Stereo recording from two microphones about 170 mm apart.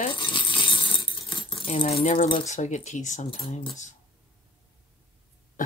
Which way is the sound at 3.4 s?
30° left (ahead or behind).